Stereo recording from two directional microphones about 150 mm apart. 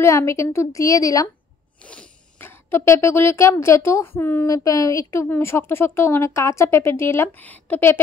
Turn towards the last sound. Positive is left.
turn(degrees=10)  # may be behind; listen again after turning